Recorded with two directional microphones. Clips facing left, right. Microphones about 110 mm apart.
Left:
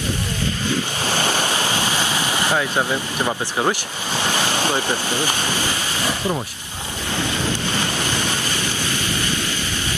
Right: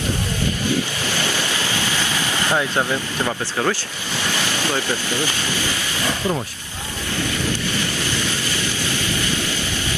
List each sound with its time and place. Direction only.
1.0 s waves: 45° left (ahead or behind)
1.5 s ocean: 15° left (ahead or behind)
2.8 s speech: 15° left (ahead or behind)
5.4 s a sound: 45° left (ahead or behind)